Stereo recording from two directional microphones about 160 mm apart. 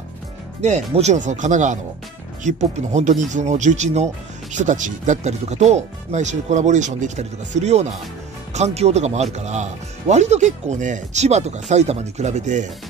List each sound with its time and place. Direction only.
0.6 s speech: 45° right (ahead or behind)